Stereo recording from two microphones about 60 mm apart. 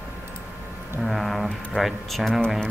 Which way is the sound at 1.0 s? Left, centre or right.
Centre.